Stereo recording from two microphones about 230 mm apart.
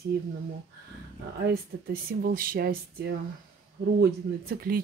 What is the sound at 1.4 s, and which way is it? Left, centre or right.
Speech, right.